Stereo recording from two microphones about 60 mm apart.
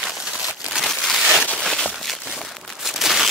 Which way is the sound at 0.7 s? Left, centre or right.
Centre.